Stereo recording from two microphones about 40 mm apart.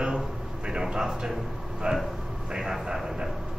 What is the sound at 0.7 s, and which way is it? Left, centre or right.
A man's voice, right.